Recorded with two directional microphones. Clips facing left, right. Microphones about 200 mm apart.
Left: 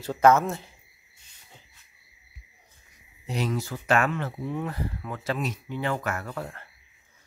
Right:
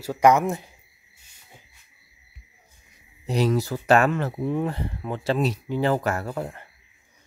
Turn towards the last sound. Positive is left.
turn(degrees=-25)  # may be behind; listen again after turning